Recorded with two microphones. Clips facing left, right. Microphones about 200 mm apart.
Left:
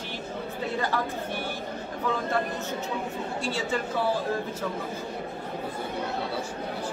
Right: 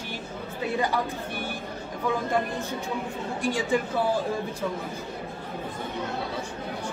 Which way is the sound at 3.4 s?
15° right (ahead or behind).